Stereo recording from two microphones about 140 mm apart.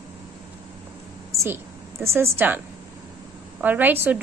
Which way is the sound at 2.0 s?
20° right (ahead or behind).